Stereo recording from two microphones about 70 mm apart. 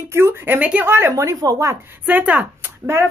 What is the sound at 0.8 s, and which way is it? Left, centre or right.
Speech, right.